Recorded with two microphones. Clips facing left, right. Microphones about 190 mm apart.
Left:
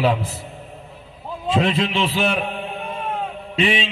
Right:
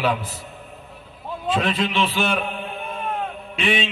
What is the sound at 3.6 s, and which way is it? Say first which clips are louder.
Speech: left 2 dB; 25° left (ahead or behind).